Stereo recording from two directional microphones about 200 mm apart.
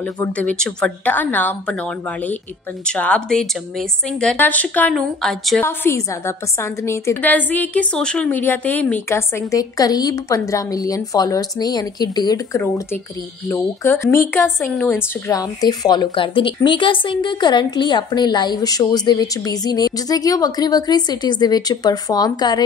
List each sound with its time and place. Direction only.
0.0 s a woman's voice: 10° left (ahead or behind)